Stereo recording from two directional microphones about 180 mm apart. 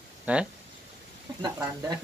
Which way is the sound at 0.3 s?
10° right (ahead or behind).